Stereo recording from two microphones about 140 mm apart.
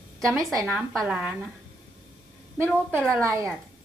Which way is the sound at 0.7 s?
5° right (ahead or behind).